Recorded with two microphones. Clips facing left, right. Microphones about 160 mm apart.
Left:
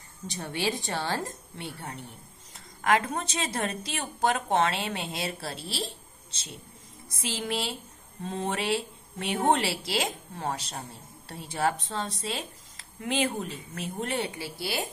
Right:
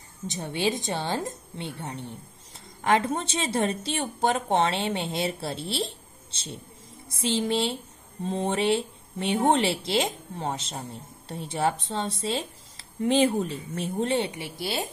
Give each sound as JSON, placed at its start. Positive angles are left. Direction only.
{"t": 0.3, "sound": "speech", "side_deg": -20}
{"t": 3.2, "sound": "speech", "side_deg": -25}
{"t": 7.1, "sound": "speech", "side_deg": -25}